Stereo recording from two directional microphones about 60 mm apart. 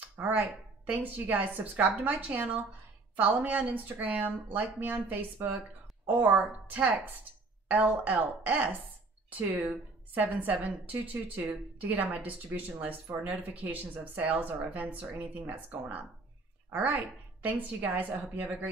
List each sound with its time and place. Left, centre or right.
0.2 s speech: right